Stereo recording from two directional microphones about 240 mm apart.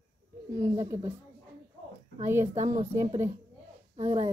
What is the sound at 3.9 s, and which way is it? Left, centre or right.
Speech, right.